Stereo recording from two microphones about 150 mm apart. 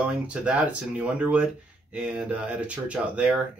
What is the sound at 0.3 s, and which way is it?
Speech, 10° right (ahead or behind).